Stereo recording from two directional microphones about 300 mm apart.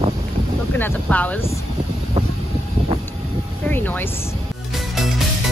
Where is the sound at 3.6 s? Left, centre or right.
Centre.